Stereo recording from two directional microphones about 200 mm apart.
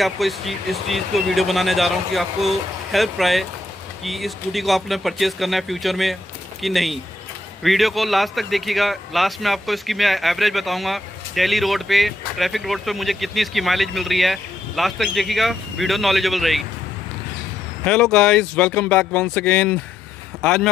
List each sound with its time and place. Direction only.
0.0 s a man's voice: centre (ahead or behind)
17.8 s a man's voice: 5° left (ahead or behind)